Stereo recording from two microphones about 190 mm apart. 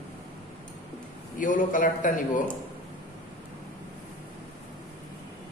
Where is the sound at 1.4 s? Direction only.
45° left (ahead or behind).